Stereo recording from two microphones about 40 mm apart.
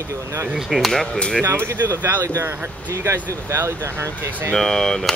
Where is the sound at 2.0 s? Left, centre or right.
Right.